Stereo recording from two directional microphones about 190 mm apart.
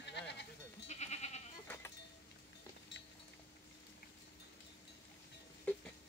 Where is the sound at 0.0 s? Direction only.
65° left (ahead or behind).